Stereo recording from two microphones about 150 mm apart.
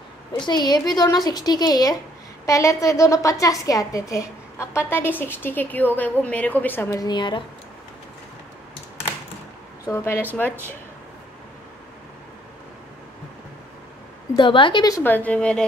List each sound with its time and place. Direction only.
0.4 s a woman's voice: 30° left (ahead or behind)
9.8 s a woman's voice: 15° left (ahead or behind)
14.3 s a woman's voice: 35° left (ahead or behind)
15.0 s a woman's voice: 10° left (ahead or behind)